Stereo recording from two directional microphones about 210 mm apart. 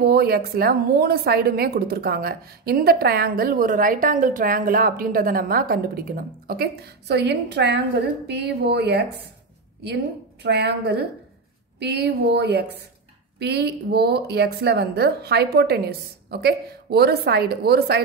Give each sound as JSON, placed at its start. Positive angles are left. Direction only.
{"t": 0.0, "sound": "a woman's voice", "side_deg": -50}
{"t": 10.4, "sound": "a woman's voice", "side_deg": -55}